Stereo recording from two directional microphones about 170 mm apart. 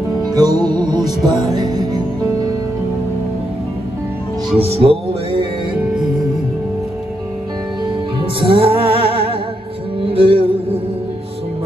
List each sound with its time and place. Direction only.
0.2 s music: 25° right (ahead or behind)
4.6 s music: 35° right (ahead or behind)
8.2 s music: 30° right (ahead or behind)